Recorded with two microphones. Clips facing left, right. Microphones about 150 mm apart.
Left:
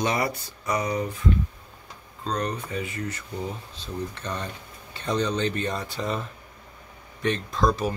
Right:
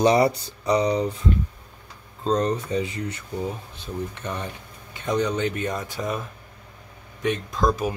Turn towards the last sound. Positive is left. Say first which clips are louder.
# right 1 dB
turn(degrees=-15)  # may be behind; listen again after turning